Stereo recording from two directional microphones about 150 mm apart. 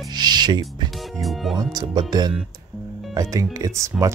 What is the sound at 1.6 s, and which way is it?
Speech, 25° right (ahead or behind).